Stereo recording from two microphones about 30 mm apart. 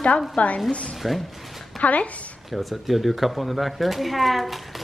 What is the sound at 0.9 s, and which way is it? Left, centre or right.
Speech, centre.